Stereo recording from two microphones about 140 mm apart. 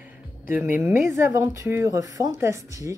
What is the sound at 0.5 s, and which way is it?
Speech, 10° right (ahead or behind).